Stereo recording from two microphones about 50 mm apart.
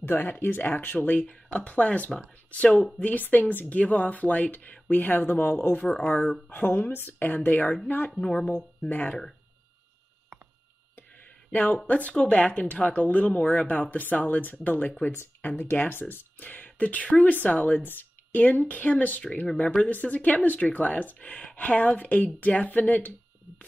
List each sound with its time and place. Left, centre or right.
0.0 s speech: left
1.2 s speech: left
8.2 s speech: centre
11.5 s speech: left
11.9 s speech: left